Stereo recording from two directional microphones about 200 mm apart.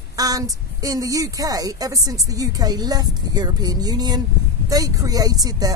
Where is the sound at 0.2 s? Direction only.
20° right (ahead or behind).